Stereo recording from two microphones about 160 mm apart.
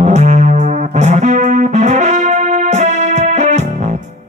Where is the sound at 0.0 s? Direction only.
50° right (ahead or behind).